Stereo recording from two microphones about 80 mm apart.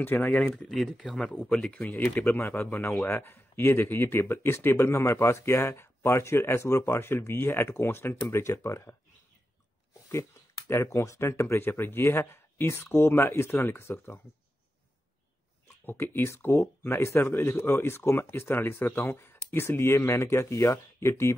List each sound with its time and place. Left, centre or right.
0.0 s speech: left
0.6 s speech: centre
2.3 s speech: left
10.7 s speech: left
15.8 s speech: left